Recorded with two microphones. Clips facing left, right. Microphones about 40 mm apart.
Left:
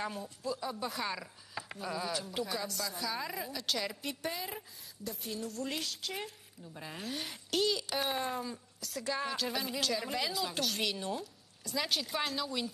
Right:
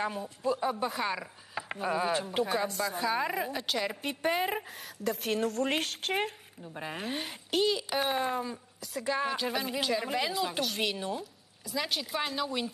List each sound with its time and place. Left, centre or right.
0.0 s a woman's voice: centre
0.4 s a woman's voice: right
0.8 s speech: centre
1.7 s a woman's voice: right
3.6 s a woman's voice: centre
3.9 s a woman's voice: right
4.4 s a woman's voice: right
5.0 s a woman's voice: right
5.5 s a woman's voice: right
6.7 s a woman's voice: right
7.2 s a woman's voice: centre
12.4 s a woman's voice: right